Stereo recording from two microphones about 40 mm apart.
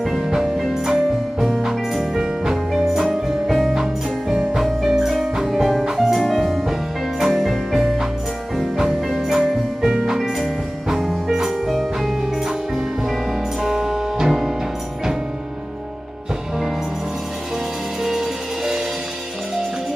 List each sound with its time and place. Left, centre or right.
0.0 s music: centre
6.1 s music: centre
7.2 s music: centre
13.6 s music: centre
18.0 s music: centre